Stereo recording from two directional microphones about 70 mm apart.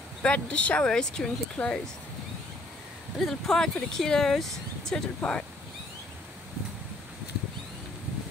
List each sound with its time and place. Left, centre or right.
0.2 s speech: centre
3.2 s speech: centre